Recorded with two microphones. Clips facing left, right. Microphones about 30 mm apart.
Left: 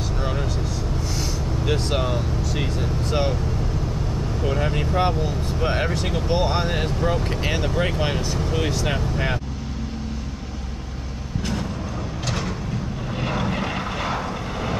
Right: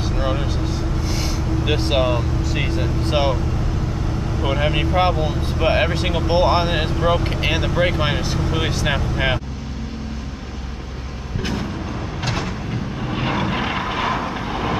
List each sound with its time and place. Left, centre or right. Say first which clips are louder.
1.7 s speech: right 4 dB; right
4.4 s speech: right 4 dB; right
13.1 s vehicle: right 3 dB; right